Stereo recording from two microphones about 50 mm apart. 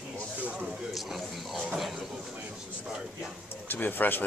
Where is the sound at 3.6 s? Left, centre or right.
Left.